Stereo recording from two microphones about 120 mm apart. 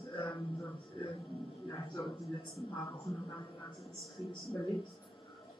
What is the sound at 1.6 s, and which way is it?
A woman's voice, 35° left (ahead or behind).